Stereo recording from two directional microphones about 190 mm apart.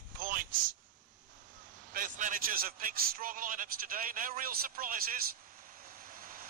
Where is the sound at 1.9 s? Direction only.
45° right (ahead or behind).